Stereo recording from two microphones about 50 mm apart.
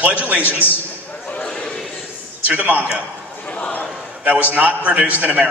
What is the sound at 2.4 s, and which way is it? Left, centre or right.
Speech, right.